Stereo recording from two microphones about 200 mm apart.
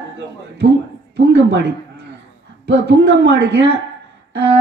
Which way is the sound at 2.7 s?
65° right (ahead or behind).